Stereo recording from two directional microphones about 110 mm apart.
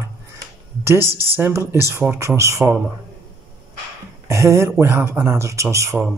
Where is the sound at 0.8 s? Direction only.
25° right (ahead or behind).